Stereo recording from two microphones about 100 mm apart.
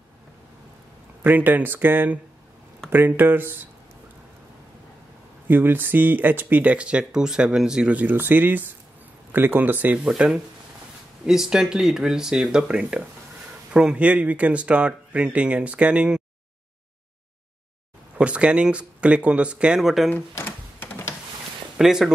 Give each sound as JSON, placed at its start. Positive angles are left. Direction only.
{"t": 1.2, "sound": "speech", "side_deg": -20}
{"t": 5.5, "sound": "speech", "side_deg": -20}
{"t": 18.1, "sound": "speech", "side_deg": -10}
{"t": 20.1, "sound": "typewriter", "side_deg": 20}
{"t": 21.7, "sound": "speech", "side_deg": -5}